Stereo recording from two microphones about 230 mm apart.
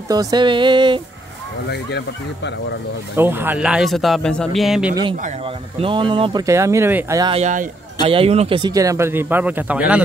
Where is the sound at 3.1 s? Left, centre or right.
Centre.